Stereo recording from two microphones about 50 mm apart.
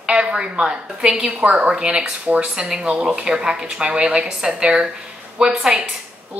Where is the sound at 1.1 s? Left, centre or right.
Right.